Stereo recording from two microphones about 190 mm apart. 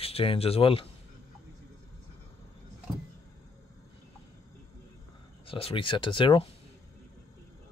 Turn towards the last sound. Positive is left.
turn(degrees=25)  # may be behind; listen again after turning